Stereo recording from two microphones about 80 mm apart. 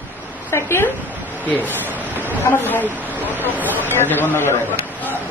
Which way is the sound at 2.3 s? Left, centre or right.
Left.